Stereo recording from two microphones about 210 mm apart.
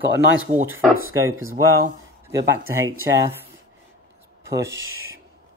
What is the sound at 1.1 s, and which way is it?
Speech, 15° right (ahead or behind).